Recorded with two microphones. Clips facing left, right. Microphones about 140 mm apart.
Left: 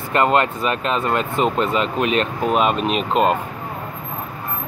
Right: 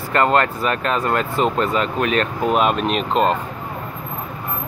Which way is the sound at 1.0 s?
Centre (ahead or behind).